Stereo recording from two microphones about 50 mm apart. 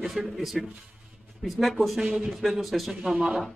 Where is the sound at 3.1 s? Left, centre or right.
Right.